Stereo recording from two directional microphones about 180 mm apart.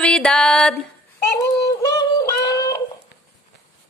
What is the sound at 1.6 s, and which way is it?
Synthetic singing, 20° left (ahead or behind).